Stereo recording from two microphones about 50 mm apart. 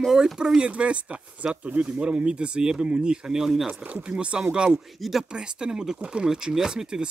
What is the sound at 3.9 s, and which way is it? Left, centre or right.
Speech, right.